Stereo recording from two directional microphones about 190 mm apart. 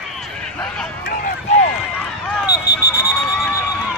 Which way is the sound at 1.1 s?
45° left (ahead or behind).